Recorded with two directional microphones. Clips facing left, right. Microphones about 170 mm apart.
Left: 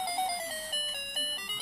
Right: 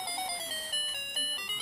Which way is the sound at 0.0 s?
55° left (ahead or behind).